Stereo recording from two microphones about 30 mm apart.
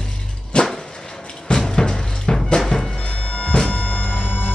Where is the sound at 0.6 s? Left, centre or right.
Left.